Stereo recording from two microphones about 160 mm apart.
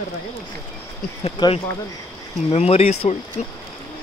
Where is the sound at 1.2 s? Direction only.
30° left (ahead or behind).